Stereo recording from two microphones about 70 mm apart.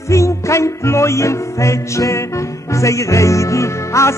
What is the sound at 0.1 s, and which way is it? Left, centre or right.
Music, left.